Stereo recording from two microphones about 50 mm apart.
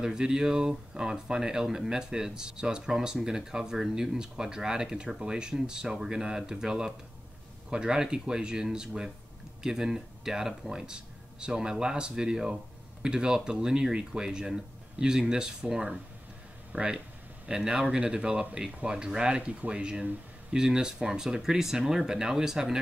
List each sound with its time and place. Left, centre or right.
0.0 s speech: centre